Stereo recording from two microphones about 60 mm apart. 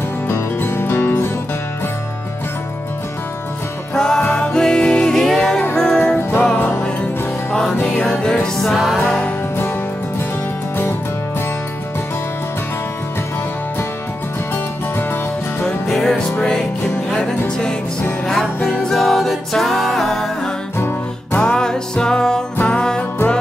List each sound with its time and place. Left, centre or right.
0.3 s music: left
3.9 s music: centre
7.8 s music: centre
8.9 s music: centre
14.5 s music: left
15.6 s music: centre
20.7 s music: left
21.4 s music: centre